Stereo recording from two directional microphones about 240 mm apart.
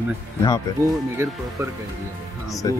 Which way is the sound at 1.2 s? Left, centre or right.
Centre.